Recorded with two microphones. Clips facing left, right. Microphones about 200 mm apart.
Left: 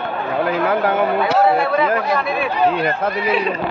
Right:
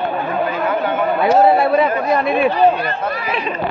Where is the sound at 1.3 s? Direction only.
25° right (ahead or behind).